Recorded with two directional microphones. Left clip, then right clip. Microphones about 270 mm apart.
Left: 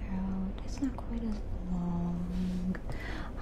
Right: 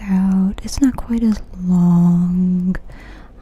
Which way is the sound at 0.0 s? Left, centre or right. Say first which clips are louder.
Right 19 dB; right.